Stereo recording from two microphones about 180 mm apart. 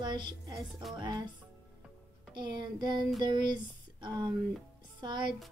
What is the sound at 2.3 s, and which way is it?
Speech, 25° right (ahead or behind).